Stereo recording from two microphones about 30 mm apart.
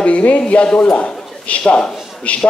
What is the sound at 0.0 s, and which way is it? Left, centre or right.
A man's voice, left.